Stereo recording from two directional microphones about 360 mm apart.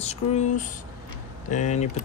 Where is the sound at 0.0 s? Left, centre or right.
Centre.